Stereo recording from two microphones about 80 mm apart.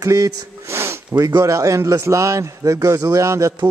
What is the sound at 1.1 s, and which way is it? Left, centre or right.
A man's voice, right.